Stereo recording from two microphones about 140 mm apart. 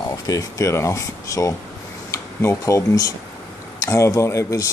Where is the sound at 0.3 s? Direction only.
25° left (ahead or behind).